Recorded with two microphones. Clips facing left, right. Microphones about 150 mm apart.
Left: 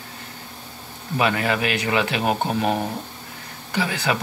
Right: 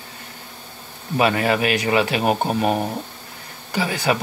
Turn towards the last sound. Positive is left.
turn(degrees=-35)  # may be behind; listen again after turning